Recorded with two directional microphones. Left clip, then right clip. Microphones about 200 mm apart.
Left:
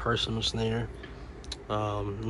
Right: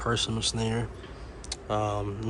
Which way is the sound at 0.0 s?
5° right (ahead or behind).